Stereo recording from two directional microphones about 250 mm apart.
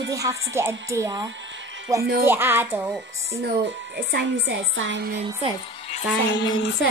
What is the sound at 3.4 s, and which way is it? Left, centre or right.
Speech, right.